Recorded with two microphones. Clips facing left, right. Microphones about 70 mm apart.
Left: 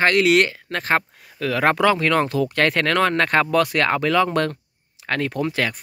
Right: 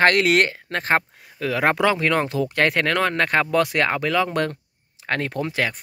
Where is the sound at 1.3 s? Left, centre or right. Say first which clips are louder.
Left 1 dB; centre.